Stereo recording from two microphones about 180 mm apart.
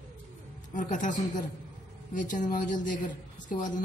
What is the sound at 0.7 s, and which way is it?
Speech, 45° left (ahead or behind).